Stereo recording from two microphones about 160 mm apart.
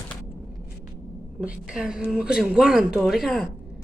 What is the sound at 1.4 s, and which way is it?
A woman's voice, 5° right (ahead or behind).